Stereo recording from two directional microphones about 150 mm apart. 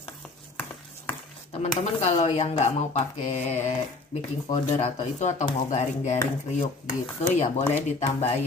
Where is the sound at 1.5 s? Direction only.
45° left (ahead or behind).